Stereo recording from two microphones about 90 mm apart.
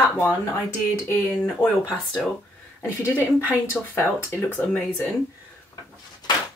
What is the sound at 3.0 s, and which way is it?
Speech, 20° right (ahead or behind).